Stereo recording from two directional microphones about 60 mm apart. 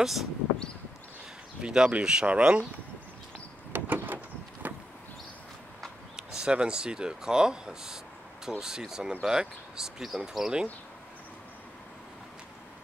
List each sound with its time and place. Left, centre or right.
0.0 s speech: centre
1.6 s speech: centre
3.7 s sliding door: right
4.6 s vehicle: right
6.1 s speech: centre